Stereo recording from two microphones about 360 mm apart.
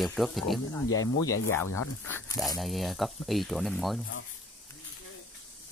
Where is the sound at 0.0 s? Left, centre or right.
Centre.